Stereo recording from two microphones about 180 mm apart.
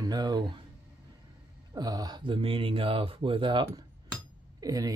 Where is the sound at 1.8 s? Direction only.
20° right (ahead or behind).